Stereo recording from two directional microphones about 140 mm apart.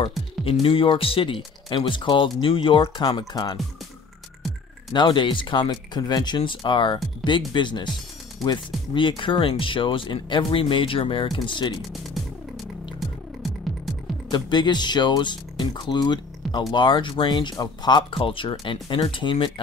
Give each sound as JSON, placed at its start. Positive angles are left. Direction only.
{"t": 0.5, "sound": "speech", "side_deg": 40}
{"t": 4.9, "sound": "speech", "side_deg": 35}
{"t": 14.3, "sound": "speech", "side_deg": 30}